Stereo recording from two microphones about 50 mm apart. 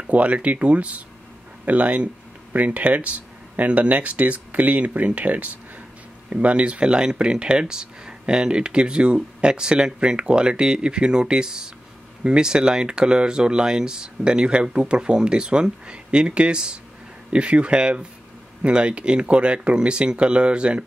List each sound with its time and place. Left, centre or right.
0.1 s speech: right